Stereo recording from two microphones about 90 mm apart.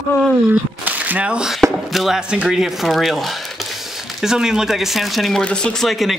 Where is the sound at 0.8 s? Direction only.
20° right (ahead or behind).